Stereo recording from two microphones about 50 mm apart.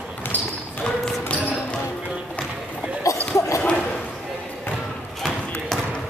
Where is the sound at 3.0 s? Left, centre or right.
Left.